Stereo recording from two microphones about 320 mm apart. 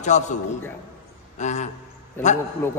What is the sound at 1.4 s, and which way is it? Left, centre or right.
Speech, left.